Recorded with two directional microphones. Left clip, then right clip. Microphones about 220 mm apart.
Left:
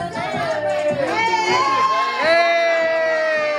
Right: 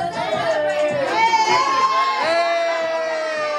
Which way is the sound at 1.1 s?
45° right (ahead or behind).